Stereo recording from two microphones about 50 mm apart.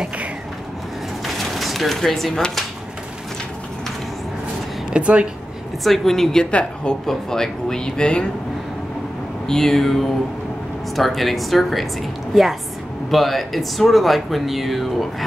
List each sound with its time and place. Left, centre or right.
1.2 s bird: centre
2.0 s speech: centre
4.9 s speech: right
5.9 s speech: centre
6.5 s speech: left
7.1 s speech: centre
9.5 s speech: centre